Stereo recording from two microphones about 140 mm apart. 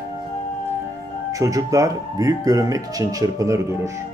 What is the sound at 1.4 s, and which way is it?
Speech, 25° right (ahead or behind).